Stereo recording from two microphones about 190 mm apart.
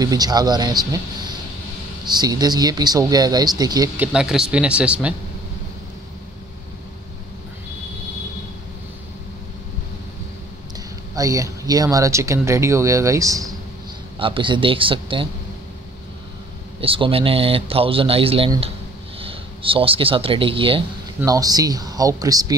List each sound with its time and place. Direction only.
0.0 s speech: 20° right (ahead or behind)
11.1 s speech: 15° right (ahead or behind)
16.8 s speech: 30° right (ahead or behind)